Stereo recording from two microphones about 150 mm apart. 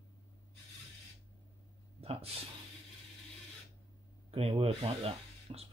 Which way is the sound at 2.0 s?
40° right (ahead or behind).